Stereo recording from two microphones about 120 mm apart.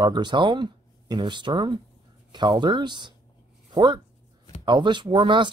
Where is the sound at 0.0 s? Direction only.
40° right (ahead or behind).